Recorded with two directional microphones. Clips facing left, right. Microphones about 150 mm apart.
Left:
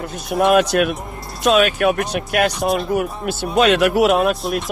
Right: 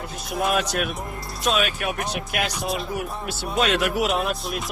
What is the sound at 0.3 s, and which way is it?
Speech, 55° left (ahead or behind).